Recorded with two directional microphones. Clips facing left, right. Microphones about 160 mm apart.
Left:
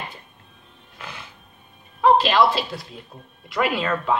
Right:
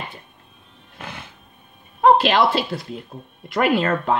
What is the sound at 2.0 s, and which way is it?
Speech, 55° right (ahead or behind).